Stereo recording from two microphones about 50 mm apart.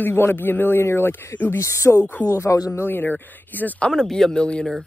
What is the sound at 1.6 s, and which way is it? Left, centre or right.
Speech, left.